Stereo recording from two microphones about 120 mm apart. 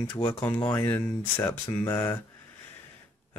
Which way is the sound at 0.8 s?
15° left (ahead or behind).